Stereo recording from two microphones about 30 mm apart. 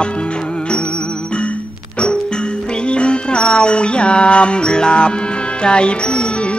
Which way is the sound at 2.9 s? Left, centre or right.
Left.